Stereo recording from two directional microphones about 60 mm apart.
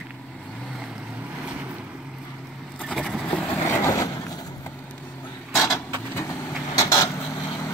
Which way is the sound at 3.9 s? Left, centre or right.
Left.